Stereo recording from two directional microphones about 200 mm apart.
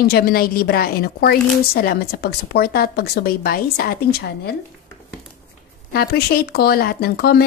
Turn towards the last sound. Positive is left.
turn(degrees=50)  # may be behind; listen again after turning